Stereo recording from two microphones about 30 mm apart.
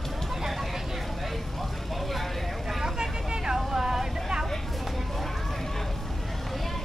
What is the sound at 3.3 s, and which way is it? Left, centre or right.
Vehicle, right.